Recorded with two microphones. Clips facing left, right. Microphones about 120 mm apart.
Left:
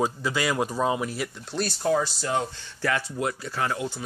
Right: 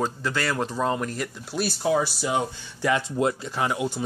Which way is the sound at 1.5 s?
5° right (ahead or behind).